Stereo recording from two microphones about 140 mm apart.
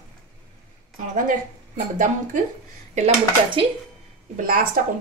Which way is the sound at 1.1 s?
70° right (ahead or behind).